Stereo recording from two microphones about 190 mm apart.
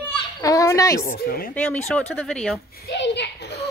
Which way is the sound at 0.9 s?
50° left (ahead or behind).